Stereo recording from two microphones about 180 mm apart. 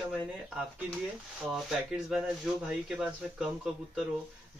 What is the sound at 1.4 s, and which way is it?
Speech, centre (ahead or behind).